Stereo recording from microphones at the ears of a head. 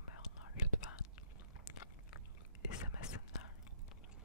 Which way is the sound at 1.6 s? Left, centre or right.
Left.